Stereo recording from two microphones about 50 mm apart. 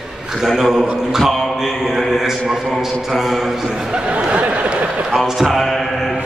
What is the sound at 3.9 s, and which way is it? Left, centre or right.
Speech, right.